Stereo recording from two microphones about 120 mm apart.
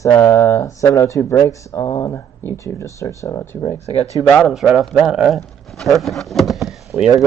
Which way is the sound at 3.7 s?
65° left (ahead or behind).